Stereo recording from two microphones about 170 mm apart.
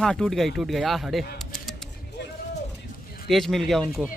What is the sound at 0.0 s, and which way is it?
Speech, 5° left (ahead or behind).